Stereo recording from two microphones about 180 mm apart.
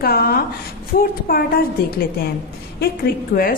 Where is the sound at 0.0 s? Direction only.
60° left (ahead or behind).